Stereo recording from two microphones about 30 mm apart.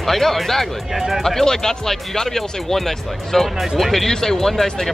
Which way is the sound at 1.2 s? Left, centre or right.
Centre.